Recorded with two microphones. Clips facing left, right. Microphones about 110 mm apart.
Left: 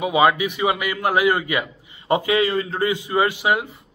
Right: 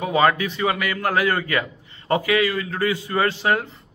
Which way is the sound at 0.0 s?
10° left (ahead or behind).